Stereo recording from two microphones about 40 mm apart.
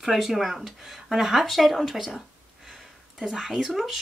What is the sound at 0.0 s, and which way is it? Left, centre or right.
A woman's voice, centre.